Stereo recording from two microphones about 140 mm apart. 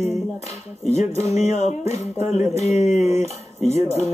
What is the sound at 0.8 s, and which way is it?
Music, 50° left (ahead or behind).